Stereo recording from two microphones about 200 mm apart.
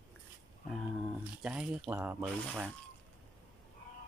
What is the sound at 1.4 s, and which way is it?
Speech, 5° right (ahead or behind).